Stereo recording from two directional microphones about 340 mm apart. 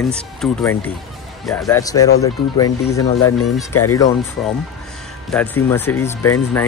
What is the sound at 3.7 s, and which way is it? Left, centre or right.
Speech, left.